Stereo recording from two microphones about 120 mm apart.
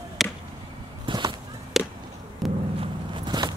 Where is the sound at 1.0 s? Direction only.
40° right (ahead or behind).